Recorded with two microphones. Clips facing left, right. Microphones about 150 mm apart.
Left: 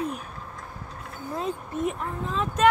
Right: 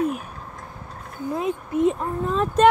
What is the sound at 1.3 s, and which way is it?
Speech, 15° right (ahead or behind).